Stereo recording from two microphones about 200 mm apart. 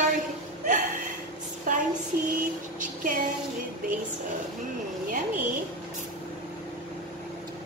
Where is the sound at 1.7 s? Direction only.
40° right (ahead or behind).